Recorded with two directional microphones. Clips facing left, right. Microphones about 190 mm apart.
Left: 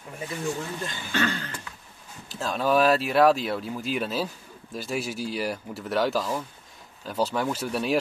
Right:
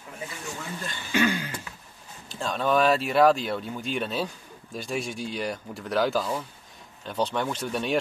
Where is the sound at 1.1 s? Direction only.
10° right (ahead or behind).